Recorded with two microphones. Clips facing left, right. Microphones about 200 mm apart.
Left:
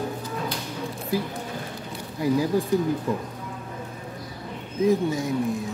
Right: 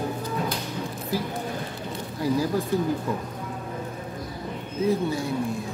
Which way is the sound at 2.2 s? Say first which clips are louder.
Left 2 dB; 15° left (ahead or behind).